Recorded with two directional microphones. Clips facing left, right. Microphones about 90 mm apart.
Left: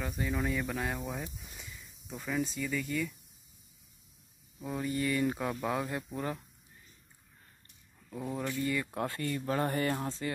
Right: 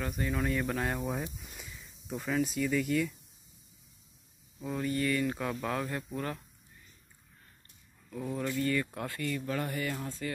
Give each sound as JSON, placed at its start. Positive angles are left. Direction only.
{"t": 0.2, "sound": "speech", "side_deg": 5}
{"t": 4.6, "sound": "speech", "side_deg": 10}
{"t": 8.1, "sound": "speech", "side_deg": 20}
{"t": 10.0, "sound": "music", "side_deg": 25}